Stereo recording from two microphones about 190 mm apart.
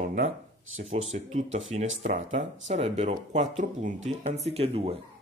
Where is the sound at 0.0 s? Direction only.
40° right (ahead or behind).